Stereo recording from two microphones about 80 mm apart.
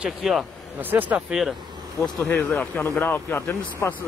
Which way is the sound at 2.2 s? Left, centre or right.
Left.